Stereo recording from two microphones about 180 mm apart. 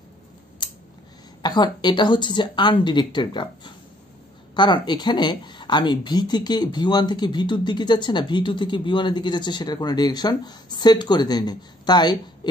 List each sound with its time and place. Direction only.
0.6 s scissors: 25° left (ahead or behind)
1.4 s speech: 25° left (ahead or behind)